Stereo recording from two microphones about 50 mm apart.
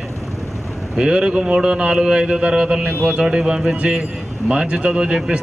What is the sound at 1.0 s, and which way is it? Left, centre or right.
A man's voice, centre.